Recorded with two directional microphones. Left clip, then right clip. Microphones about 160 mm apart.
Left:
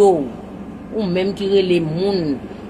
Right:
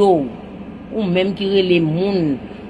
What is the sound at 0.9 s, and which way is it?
A man's voice, 40° right (ahead or behind).